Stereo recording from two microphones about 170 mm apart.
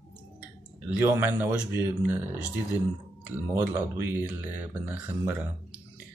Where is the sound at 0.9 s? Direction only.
15° right (ahead or behind).